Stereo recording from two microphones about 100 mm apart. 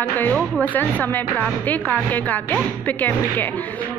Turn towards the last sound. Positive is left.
turn(degrees=20)  # may be behind; listen again after turning